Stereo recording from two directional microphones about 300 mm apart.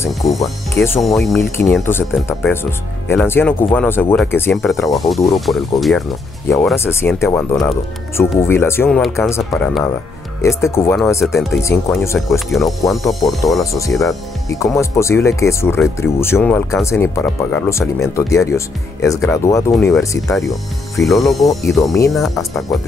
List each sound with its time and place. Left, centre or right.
0.0 s speech: centre
22.3 s speech: centre